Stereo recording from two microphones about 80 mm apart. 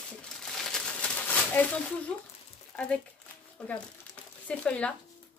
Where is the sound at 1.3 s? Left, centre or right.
Left.